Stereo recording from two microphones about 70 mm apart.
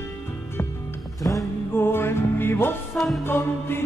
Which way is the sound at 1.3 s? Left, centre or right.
Left.